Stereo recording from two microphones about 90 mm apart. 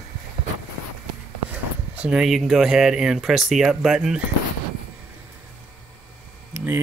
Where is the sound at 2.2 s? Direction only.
5° right (ahead or behind).